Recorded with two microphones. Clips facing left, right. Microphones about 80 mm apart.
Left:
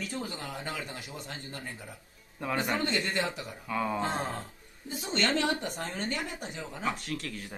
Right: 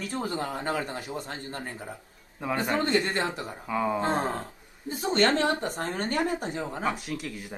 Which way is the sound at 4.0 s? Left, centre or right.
Right.